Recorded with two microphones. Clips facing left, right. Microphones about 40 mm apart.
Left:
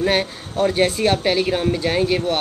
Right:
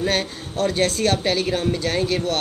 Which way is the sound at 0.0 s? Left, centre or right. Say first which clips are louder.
Left 3 dB; centre.